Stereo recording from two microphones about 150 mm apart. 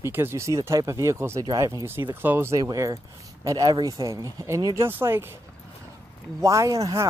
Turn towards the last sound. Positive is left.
turn(degrees=-20)  # may be behind; listen again after turning